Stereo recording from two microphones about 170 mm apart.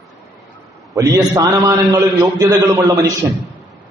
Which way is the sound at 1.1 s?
20° right (ahead or behind).